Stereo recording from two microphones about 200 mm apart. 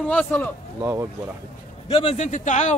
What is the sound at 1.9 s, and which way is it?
Speech, 30° left (ahead or behind).